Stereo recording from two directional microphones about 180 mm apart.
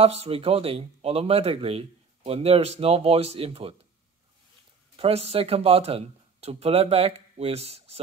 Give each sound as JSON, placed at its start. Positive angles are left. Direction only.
{"t": 0.0, "sound": "speech", "side_deg": -35}
{"t": 4.9, "sound": "speech", "side_deg": -35}